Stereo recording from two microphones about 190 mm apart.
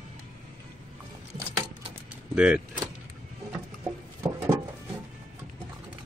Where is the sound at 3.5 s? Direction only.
15° right (ahead or behind).